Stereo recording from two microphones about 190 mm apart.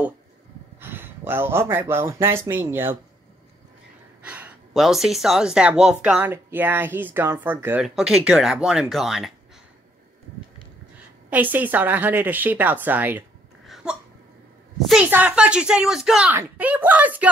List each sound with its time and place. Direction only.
0.7 s speech: 10° right (ahead or behind)
4.2 s speech: 5° right (ahead or behind)
11.2 s a woman's voice: 10° right (ahead or behind)